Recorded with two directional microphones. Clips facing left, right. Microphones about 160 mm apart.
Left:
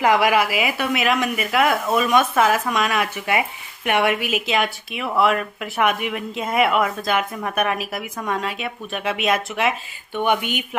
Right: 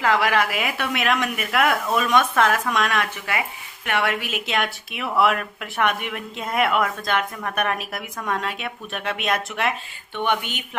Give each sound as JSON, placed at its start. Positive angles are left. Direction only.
{"t": 0.0, "sound": "speech", "side_deg": 15}
{"t": 3.3, "sound": "speech", "side_deg": 20}
{"t": 4.5, "sound": "speech", "side_deg": 0}